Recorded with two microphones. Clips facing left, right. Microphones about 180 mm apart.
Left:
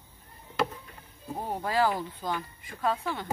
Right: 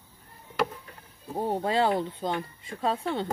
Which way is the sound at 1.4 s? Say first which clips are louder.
Right 2 dB; 25° right (ahead or behind).